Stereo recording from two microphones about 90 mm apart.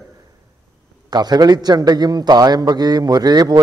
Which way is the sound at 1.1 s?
50° right (ahead or behind).